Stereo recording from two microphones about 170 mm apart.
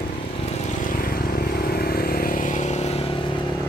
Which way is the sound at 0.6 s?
55° left (ahead or behind).